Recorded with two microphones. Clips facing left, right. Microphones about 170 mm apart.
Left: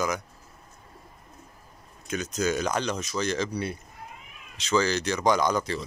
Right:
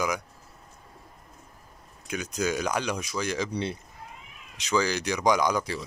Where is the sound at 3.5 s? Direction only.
25° right (ahead or behind).